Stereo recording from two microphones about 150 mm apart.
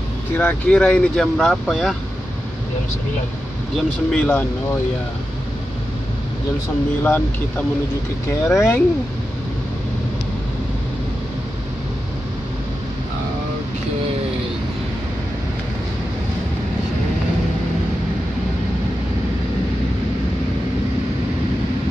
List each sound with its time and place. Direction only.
0.4 s speech: 10° left (ahead or behind)
3.7 s speech: 5° left (ahead or behind)
8.3 s speech: 20° left (ahead or behind)